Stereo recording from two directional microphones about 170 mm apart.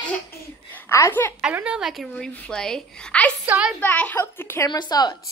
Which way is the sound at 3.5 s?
5° right (ahead or behind).